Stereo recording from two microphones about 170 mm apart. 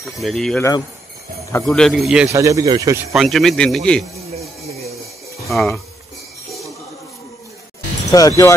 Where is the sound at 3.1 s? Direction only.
Centre (ahead or behind).